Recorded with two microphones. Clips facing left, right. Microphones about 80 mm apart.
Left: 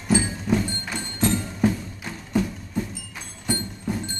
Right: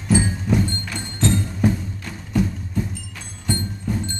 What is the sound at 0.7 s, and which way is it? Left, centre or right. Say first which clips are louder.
Music: right 1 dB; centre.